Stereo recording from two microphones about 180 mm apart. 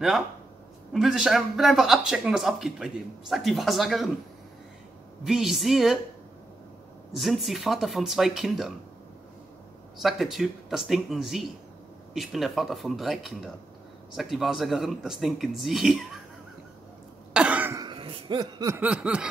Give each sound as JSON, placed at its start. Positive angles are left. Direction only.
{"t": 0.9, "sound": "speech", "side_deg": -5}
{"t": 5.2, "sound": "speech", "side_deg": 0}
{"t": 7.2, "sound": "speech", "side_deg": 0}
{"t": 10.0, "sound": "speech", "side_deg": 0}
{"t": 17.3, "sound": "cough", "side_deg": -5}
{"t": 17.8, "sound": "chuckle", "side_deg": -25}
{"t": 18.8, "sound": "snicker", "side_deg": -5}